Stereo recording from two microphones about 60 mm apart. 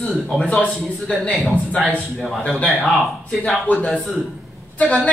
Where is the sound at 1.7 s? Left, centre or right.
Centre.